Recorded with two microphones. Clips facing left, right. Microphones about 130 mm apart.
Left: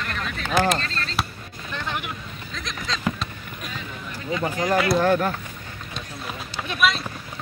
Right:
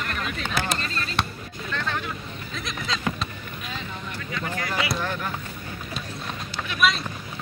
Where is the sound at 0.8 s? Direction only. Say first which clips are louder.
Even; 10° right (ahead or behind).